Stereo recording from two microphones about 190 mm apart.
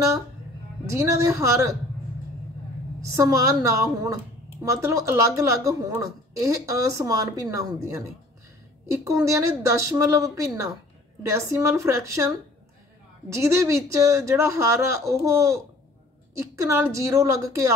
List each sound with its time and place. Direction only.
0.9 s a woman's voice: 15° right (ahead or behind)
3.0 s a woman's voice: 15° right (ahead or behind)
9.0 s a woman's voice: 15° right (ahead or behind)
13.4 s a woman's voice: 15° right (ahead or behind)